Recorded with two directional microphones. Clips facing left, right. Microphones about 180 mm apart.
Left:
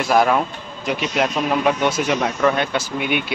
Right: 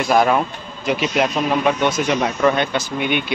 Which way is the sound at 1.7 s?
10° left (ahead or behind).